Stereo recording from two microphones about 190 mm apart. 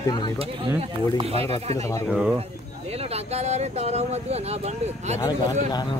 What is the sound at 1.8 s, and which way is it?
Speech, 15° left (ahead or behind).